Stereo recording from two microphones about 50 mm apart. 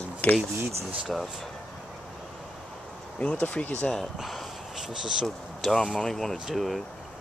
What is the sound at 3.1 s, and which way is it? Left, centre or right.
Speech, left.